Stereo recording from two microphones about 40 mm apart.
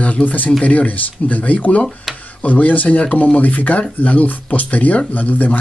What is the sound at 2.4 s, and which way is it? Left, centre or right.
Speech, left.